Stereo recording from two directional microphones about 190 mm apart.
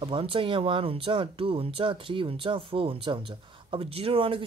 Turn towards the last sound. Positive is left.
turn(degrees=-30)  # may be behind; listen again after turning